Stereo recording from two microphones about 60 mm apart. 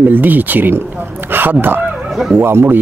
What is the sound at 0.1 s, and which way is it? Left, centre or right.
A man's voice, right.